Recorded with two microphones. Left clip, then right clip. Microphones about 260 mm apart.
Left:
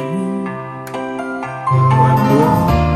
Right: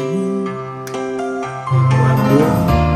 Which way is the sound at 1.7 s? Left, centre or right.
Centre.